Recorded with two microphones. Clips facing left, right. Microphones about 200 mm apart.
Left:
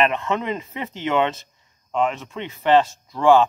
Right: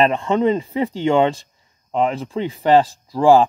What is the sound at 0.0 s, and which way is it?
Speech, 30° right (ahead or behind).